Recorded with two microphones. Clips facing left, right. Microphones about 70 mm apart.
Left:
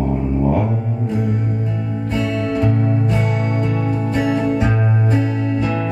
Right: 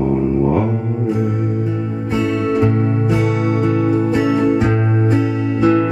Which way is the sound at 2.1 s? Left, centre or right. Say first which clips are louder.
Right 3 dB; centre.